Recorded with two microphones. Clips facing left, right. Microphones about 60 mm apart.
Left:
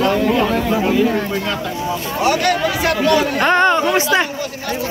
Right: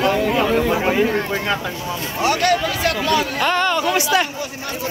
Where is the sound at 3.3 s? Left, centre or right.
Left.